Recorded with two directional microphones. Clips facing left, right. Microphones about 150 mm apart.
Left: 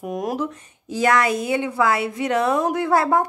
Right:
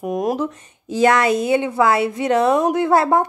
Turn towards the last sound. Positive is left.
turn(degrees=-25)  # may be behind; listen again after turning